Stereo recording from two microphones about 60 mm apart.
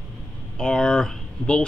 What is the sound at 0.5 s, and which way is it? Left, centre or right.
Speech, centre.